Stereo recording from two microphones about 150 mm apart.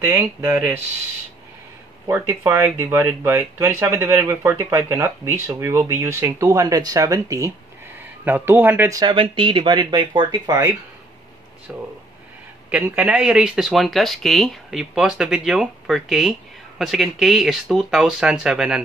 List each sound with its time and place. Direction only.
2.0 s speech: 15° right (ahead or behind)
8.9 s speech: 30° right (ahead or behind)
11.7 s speech: 10° right (ahead or behind)